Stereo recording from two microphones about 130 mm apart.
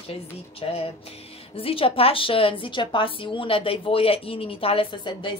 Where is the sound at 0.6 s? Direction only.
45° left (ahead or behind).